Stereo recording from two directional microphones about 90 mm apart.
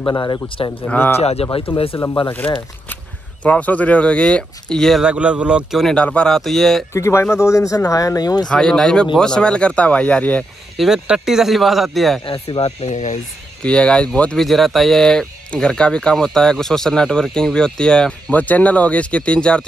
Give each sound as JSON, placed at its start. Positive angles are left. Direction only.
{"t": 0.0, "sound": "a man's voice", "side_deg": 50}
{"t": 0.6, "sound": "speech", "side_deg": 90}
{"t": 0.9, "sound": "speech", "side_deg": 20}
{"t": 1.4, "sound": "speech", "side_deg": 90}
{"t": 1.9, "sound": "speech", "side_deg": 75}
{"t": 3.4, "sound": "speech", "side_deg": 15}
{"t": 5.0, "sound": "speech", "side_deg": -15}
{"t": 5.9, "sound": "speech", "side_deg": 10}
{"t": 6.9, "sound": "speech", "side_deg": 30}
{"t": 8.5, "sound": "speech", "side_deg": 10}
{"t": 10.8, "sound": "speech", "side_deg": -5}
{"t": 12.3, "sound": "speech", "side_deg": 85}
{"t": 13.6, "sound": "speech", "side_deg": 10}
{"t": 14.4, "sound": "speech", "side_deg": 0}